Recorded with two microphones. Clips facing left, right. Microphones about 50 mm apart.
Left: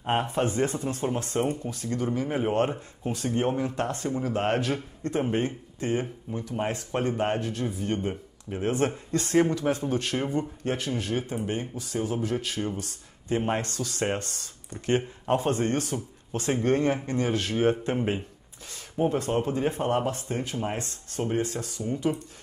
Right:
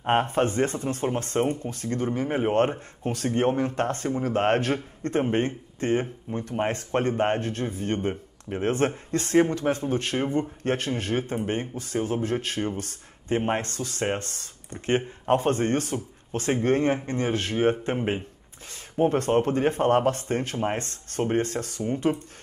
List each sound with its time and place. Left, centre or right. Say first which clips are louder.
0.0 s speech: right 3 dB; right
3.1 s speech: right 3 dB; right
8.1 s speech: right 3 dB; right
8.6 s speech: right 2 dB; right
18.9 s speech: right 4 dB; right